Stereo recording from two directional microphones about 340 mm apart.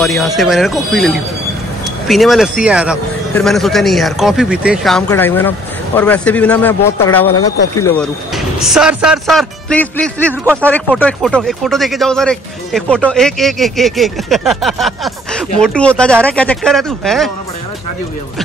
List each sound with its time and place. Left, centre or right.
0.0 s speech: centre
7.2 s speech: left
8.5 s speech: centre